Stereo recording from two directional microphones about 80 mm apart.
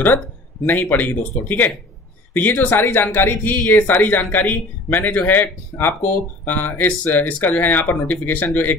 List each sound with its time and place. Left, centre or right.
0.7 s speech: left